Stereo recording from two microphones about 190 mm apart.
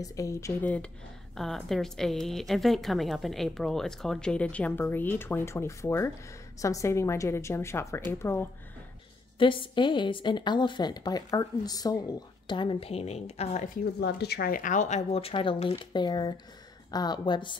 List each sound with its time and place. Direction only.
0.0 s a woman's voice: 15° left (ahead or behind)
9.4 s a woman's voice: 25° left (ahead or behind)
13.9 s a woman's voice: 60° left (ahead or behind); by 17.6 s 25° left (ahead or behind)